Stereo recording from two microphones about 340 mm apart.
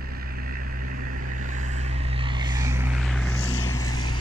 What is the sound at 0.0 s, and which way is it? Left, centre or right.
Vehicle, right.